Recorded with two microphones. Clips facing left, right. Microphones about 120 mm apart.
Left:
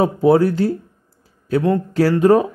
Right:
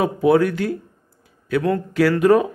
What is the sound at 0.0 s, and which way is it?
Speech, 30° left (ahead or behind).